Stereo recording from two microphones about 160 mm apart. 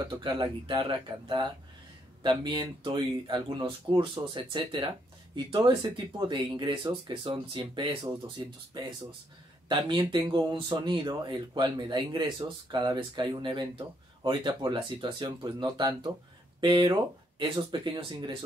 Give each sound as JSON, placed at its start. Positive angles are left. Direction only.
{"t": 0.0, "sound": "speech", "side_deg": -30}
{"t": 9.7, "sound": "speech", "side_deg": -30}